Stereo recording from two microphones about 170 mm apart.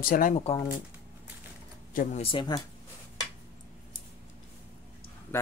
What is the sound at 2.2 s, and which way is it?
Speech, 30° left (ahead or behind).